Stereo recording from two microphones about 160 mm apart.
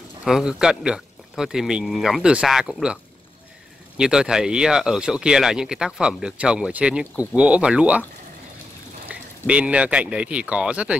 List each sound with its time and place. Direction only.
0.2 s speech: 5° right (ahead or behind)
4.0 s speech: 5° right (ahead or behind)
9.1 s speech: 10° right (ahead or behind)